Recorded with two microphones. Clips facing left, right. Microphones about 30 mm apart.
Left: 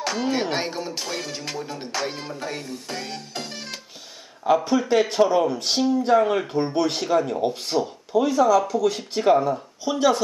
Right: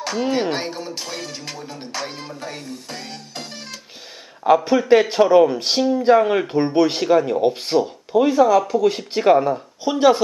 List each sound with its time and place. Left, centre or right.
0.0 s speech: centre
4.6 s speech: right